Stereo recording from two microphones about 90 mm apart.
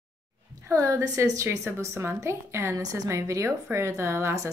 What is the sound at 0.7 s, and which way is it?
A woman's voice, 35° right (ahead or behind).